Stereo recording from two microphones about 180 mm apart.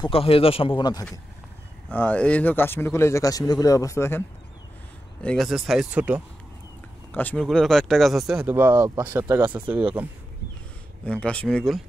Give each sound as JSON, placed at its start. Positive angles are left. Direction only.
{"t": 0.0, "sound": "a man's voice", "side_deg": 30}
{"t": 1.9, "sound": "speech", "side_deg": 10}
{"t": 5.2, "sound": "speech", "side_deg": 5}
{"t": 7.1, "sound": "speech", "side_deg": 10}
{"t": 11.1, "sound": "speech", "side_deg": 5}